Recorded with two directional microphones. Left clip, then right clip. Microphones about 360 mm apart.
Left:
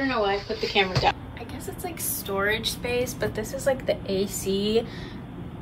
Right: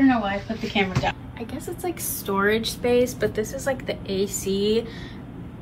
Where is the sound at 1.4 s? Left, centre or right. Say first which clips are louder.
Right 4 dB; centre.